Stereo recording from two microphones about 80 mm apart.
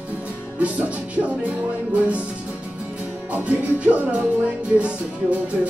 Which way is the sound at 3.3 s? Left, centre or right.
Right.